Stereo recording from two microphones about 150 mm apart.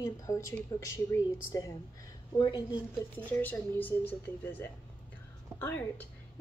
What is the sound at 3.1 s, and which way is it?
A woman's voice, 10° left (ahead or behind).